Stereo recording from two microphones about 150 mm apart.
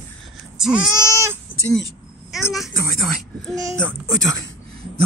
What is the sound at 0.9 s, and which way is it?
Baby cry, 20° left (ahead or behind).